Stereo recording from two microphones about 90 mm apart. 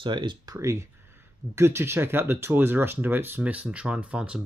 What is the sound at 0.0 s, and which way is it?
Speech, 60° right (ahead or behind).